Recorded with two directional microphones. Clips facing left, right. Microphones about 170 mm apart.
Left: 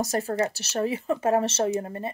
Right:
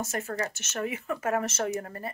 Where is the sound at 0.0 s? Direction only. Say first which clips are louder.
Left 6 dB; 35° left (ahead or behind).